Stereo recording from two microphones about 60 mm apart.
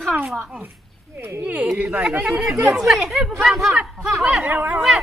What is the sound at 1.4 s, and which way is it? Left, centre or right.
Speech, right.